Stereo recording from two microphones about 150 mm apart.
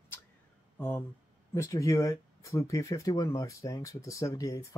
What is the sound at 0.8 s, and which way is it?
Speech, 15° left (ahead or behind).